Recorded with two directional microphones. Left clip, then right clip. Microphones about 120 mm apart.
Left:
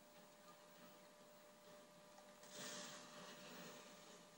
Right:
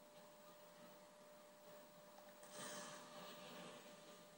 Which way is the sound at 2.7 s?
25° left (ahead or behind).